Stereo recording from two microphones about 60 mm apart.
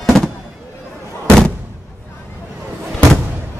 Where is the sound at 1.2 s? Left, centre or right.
Centre.